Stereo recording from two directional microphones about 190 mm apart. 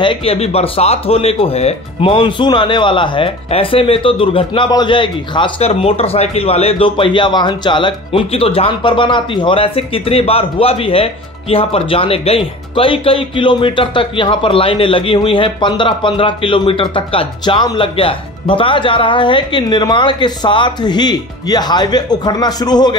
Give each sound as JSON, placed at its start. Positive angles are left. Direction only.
{"t": 0.0, "sound": "speech", "side_deg": 30}